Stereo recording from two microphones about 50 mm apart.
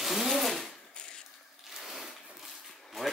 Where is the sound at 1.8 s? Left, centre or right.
Centre.